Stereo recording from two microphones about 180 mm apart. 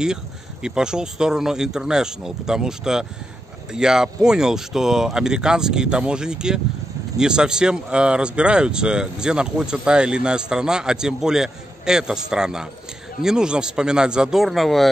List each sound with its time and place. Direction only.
0.0 s speech: 5° right (ahead or behind)